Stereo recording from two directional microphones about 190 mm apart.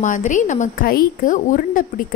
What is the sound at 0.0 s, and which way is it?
A woman's voice, 40° left (ahead or behind).